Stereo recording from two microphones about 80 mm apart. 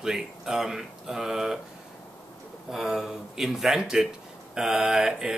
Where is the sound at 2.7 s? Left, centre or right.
Centre.